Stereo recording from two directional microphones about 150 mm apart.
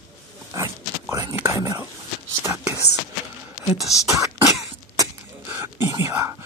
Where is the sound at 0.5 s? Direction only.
20° right (ahead or behind).